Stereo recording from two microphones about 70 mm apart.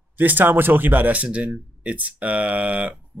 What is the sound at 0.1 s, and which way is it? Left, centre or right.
Speech, right.